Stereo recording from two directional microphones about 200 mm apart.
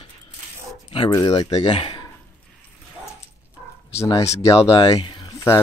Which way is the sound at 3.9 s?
15° left (ahead or behind).